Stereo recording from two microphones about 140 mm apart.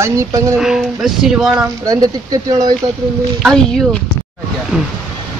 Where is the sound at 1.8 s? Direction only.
25° right (ahead or behind).